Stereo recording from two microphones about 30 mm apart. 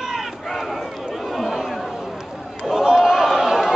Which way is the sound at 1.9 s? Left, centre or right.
Centre.